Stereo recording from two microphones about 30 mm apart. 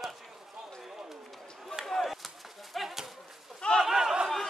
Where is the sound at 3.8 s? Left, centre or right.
Centre.